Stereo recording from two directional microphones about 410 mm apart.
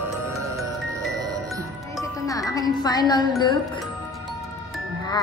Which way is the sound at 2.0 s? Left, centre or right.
Centre.